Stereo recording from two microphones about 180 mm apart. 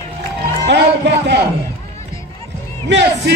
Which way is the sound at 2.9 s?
80° right.